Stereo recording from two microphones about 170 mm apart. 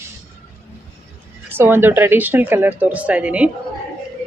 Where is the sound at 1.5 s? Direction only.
15° right (ahead or behind).